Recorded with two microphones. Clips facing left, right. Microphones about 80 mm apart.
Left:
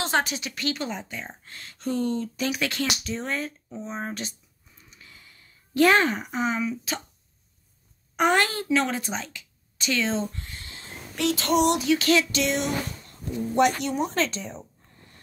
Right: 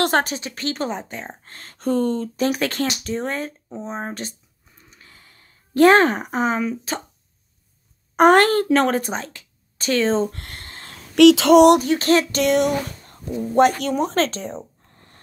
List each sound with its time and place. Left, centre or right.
0.0 s speech: right
8.2 s a woman's voice: right
10.3 s a sound: right
10.9 s speech: right
11.8 s a woman's voice: right
13.6 s a woman's voice: right
14.1 s a sound: right